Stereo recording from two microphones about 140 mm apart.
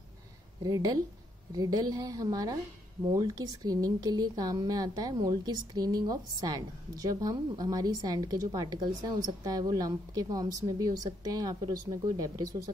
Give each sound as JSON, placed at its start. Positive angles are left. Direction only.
{"t": 0.7, "sound": "a woman's voice", "side_deg": -25}